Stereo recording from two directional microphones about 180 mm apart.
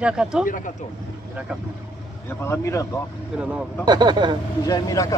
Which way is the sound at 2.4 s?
15° left (ahead or behind).